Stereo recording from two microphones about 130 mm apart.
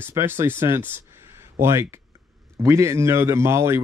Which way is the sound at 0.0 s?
15° right (ahead or behind).